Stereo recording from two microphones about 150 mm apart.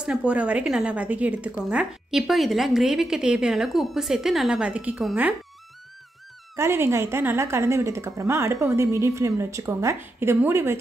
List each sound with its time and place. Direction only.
0.0 s a woman's voice: 5° right (ahead or behind)
6.5 s a woman's voice: 15° right (ahead or behind)